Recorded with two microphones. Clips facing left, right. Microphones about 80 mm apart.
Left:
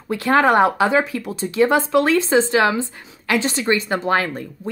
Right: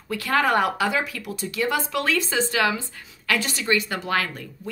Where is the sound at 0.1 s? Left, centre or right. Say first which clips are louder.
Left 6 dB; left.